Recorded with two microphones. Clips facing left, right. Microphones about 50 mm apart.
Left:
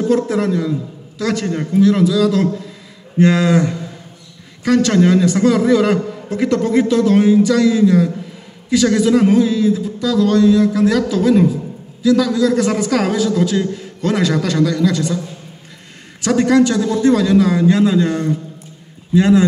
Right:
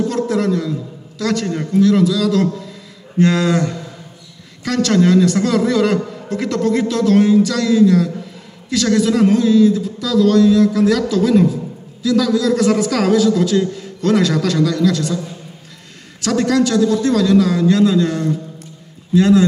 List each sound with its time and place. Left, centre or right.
0.1 s a man's voice: centre
16.2 s a man's voice: centre